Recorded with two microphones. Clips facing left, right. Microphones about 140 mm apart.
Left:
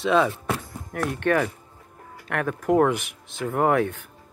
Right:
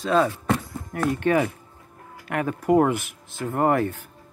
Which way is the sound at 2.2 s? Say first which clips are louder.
Right 1 dB; 10° right (ahead or behind).